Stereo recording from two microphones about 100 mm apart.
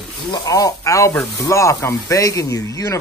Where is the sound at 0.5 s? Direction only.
35° left (ahead or behind).